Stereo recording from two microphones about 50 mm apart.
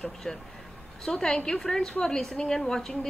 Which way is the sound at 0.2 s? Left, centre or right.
Centre.